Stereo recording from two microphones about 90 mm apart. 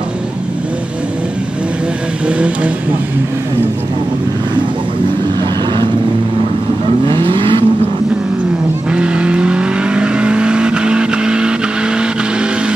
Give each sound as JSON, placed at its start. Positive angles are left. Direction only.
{"t": 2.2, "sound": "vehicle", "side_deg": -15}
{"t": 7.1, "sound": "vehicle", "side_deg": -70}
{"t": 8.9, "sound": "vehicle", "side_deg": -10}